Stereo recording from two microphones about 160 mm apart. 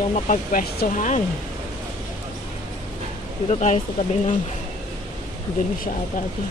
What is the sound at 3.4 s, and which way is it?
Speech, 45° left (ahead or behind).